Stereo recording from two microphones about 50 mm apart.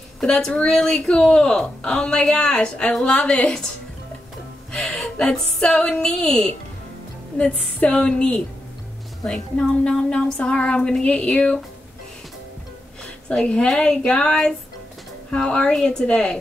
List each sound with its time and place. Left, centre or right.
0.2 s a woman's voice: centre
0.7 s music: centre
0.9 s speech: left
4.7 s music: centre
7.3 s speech: left
13.3 s speech: left
15.3 s speech: left
15.7 s music: centre
16.1 s speech: centre